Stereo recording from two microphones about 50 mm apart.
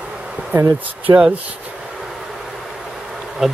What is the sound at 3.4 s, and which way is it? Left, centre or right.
Speech, centre.